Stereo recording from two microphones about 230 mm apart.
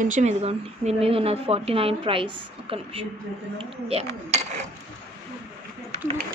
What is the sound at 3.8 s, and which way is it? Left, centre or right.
Speech, right.